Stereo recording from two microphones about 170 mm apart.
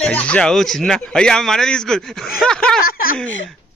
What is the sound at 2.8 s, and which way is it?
Speech, 60° left (ahead or behind).